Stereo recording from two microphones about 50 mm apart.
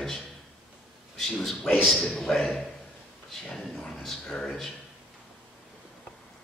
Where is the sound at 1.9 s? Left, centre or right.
Left.